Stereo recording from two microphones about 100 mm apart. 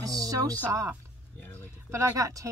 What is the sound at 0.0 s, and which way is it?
Speech, 35° right (ahead or behind).